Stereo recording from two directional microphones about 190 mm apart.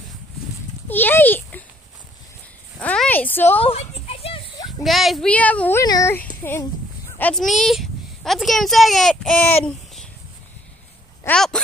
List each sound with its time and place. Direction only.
0.8 s a sound: 10° left (ahead or behind)
2.8 s a sound: 5° left (ahead or behind)
3.5 s children playing: 30° left (ahead or behind)
4.6 s speech: centre (ahead or behind); by 6.2 s 15° left (ahead or behind)
7.2 s a child's voice: 5° left (ahead or behind)
11.2 s a child's voice: 5° left (ahead or behind)